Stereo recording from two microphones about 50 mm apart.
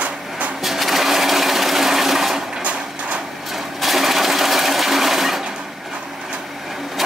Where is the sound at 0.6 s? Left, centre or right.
Centre.